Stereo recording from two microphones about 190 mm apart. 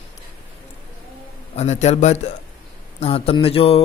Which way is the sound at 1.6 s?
35° left (ahead or behind).